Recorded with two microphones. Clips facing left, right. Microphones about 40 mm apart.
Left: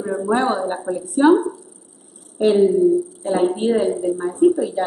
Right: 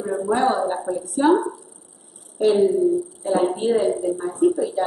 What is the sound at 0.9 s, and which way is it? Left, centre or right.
A woman's voice, left.